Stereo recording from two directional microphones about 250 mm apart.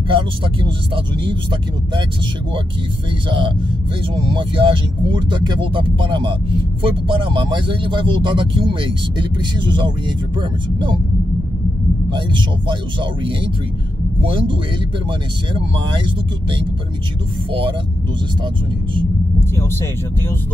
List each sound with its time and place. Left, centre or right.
0.1 s speech: centre
3.3 s speech: centre
12.1 s speech: centre
17.5 s speech: right